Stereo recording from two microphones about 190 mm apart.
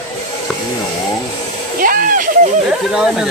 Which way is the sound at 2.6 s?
5° right (ahead or behind).